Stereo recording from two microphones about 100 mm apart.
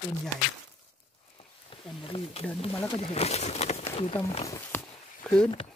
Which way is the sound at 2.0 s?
80° left.